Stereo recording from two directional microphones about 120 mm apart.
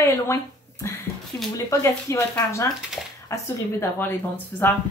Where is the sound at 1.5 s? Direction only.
25° left (ahead or behind).